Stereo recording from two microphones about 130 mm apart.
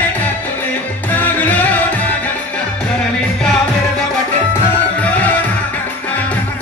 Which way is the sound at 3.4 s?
5° left (ahead or behind).